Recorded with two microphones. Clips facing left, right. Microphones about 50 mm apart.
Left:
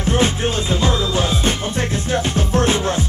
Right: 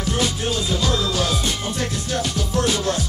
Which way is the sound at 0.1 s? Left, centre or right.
Left.